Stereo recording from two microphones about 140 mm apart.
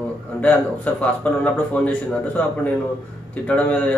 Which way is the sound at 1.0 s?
10° left (ahead or behind).